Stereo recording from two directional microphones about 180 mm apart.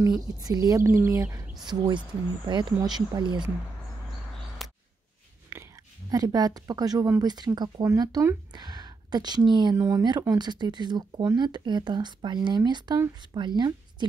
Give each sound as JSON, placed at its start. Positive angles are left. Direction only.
{"t": 0.4, "sound": "speech", "side_deg": -20}
{"t": 4.6, "sound": "a sound", "side_deg": 0}
{"t": 5.5, "sound": "speech", "side_deg": -15}